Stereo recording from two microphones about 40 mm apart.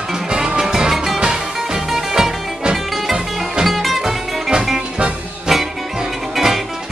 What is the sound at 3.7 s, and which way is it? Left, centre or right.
Music, centre.